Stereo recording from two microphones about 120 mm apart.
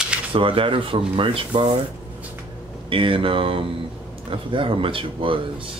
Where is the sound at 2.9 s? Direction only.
45° right (ahead or behind).